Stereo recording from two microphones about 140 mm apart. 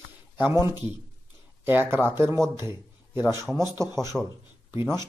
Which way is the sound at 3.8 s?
20° right (ahead or behind).